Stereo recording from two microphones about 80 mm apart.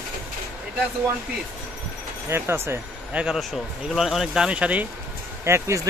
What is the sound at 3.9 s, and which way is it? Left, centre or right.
Speech, centre.